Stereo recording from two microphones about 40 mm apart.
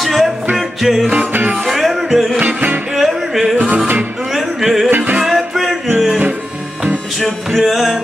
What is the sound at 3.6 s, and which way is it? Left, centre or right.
Music, right.